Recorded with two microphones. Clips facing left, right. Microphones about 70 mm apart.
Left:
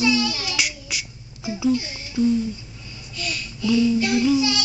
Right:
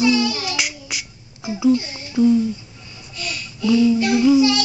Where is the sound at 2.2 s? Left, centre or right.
Centre.